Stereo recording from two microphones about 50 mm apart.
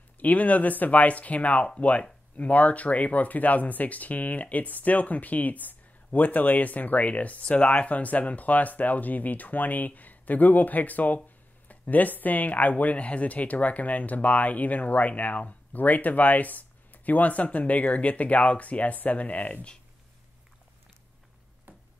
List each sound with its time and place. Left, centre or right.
0.2 s speech: left